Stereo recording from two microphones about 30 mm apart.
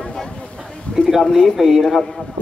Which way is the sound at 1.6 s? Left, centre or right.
Centre.